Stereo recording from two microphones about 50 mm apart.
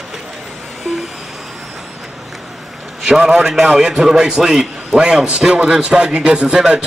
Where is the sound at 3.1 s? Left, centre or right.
Centre.